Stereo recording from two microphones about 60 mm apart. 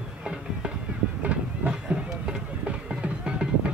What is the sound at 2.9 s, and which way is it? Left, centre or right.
Music, centre.